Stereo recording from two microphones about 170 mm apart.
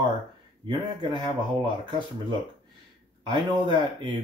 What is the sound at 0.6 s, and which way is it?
Speech, 30° right (ahead or behind).